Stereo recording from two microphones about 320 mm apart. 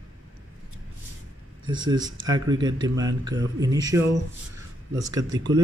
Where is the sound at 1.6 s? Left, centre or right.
Centre.